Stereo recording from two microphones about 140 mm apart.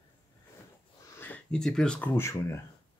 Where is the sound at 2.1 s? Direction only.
20° left (ahead or behind).